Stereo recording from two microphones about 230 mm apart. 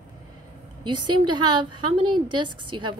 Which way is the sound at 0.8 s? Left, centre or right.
Centre.